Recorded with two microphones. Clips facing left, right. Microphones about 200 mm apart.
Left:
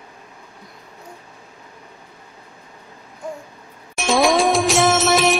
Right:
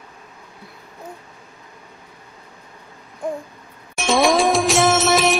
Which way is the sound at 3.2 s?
55° right (ahead or behind).